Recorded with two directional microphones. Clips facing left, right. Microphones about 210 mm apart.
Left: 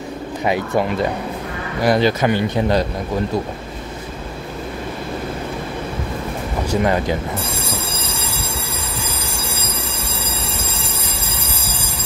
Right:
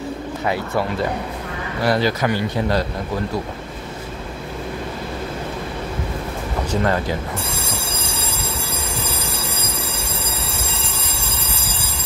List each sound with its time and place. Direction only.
1.8 s speech: 20° left (ahead or behind)
6.7 s speech: 15° left (ahead or behind)